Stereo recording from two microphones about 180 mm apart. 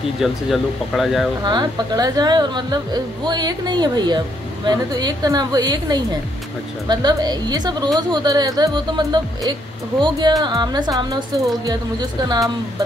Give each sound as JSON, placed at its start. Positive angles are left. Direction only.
{"t": 0.2, "sound": "speech", "side_deg": 0}
{"t": 1.4, "sound": "a woman's voice", "side_deg": -25}